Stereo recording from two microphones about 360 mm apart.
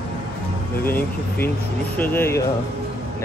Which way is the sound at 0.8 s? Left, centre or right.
Centre.